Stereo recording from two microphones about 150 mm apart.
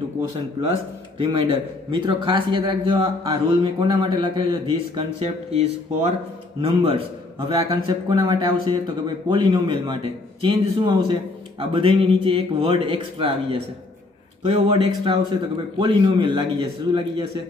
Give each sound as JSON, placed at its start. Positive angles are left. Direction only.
{"t": 0.7, "sound": "a man's voice", "side_deg": -35}